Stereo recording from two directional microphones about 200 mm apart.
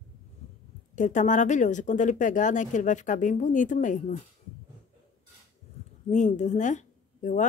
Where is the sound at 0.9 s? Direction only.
40° left (ahead or behind).